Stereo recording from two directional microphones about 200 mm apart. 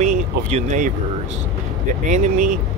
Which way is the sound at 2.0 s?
40° right (ahead or behind).